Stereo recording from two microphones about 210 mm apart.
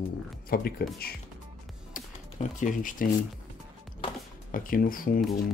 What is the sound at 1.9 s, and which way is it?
Music, 40° left (ahead or behind).